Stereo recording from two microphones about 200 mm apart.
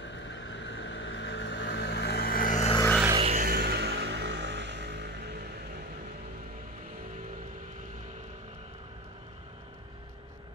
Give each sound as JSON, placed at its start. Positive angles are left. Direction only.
{"t": 0.0, "sound": "vehicle", "side_deg": 65}
{"t": 3.2, "sound": "music", "side_deg": -30}
{"t": 3.4, "sound": "music", "side_deg": -50}